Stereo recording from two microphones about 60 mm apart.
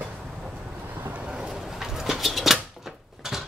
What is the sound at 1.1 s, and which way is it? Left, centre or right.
Pigeon, centre.